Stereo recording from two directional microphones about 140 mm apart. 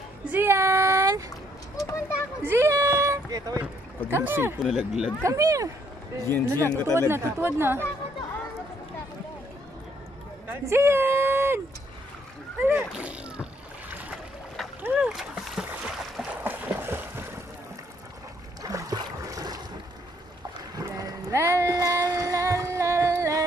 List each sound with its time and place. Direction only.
0.3 s child singing: 15° right (ahead or behind)
1.8 s speech: 25° left (ahead or behind)
2.4 s a sound: 20° right (ahead or behind)
4.1 s speech: 15° right (ahead or behind)
4.6 s speech: centre (ahead or behind)
5.2 s speech: 25° right (ahead or behind)
10.5 s a sound: 20° right (ahead or behind)
12.5 s speech: 15° right (ahead or behind)
14.8 s boat: 10° right (ahead or behind)
18.6 s boat: 25° right (ahead or behind)
20.7 s a sound: 25° right (ahead or behind)